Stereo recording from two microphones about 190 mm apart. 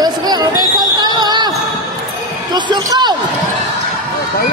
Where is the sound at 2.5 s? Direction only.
25° right (ahead or behind).